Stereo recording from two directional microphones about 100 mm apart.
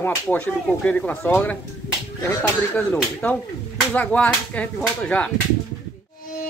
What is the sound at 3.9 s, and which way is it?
Speech, 15° left (ahead or behind).